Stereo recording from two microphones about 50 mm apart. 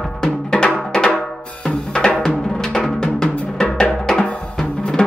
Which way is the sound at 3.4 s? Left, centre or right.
Centre.